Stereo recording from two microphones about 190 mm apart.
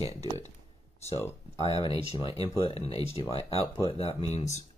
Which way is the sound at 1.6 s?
30° left (ahead or behind).